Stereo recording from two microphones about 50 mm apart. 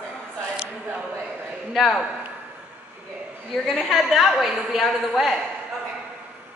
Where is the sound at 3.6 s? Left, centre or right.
Centre.